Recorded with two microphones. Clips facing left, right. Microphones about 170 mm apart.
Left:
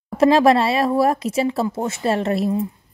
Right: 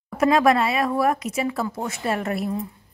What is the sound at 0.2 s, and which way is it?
A woman's voice, 30° left (ahead or behind).